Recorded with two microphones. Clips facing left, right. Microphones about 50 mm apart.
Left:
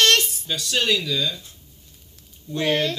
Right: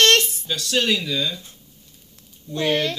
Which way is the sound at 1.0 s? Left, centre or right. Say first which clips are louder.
Even; centre.